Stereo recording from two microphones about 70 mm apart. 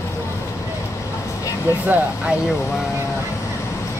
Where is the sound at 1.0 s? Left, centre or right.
Left.